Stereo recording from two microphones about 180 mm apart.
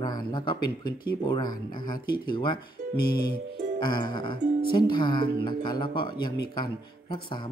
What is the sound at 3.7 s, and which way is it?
Speech, 25° left (ahead or behind).